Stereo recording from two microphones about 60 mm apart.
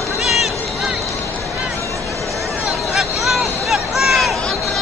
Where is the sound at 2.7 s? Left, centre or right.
Centre.